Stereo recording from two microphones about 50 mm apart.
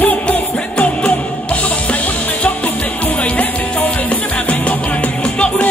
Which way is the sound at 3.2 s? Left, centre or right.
Left.